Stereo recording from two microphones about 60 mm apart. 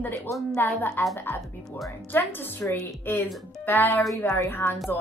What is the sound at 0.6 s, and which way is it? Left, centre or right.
A woman's voice, left.